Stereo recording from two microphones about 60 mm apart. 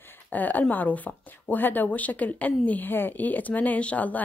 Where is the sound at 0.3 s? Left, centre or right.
Left.